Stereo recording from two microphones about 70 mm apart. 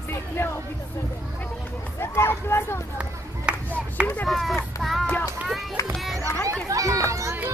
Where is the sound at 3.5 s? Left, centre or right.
Centre.